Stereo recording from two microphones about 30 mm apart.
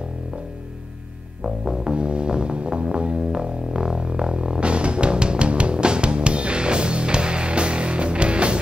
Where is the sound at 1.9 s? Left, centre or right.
Right.